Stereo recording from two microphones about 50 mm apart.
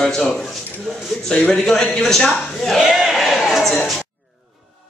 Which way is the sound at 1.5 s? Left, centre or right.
Centre.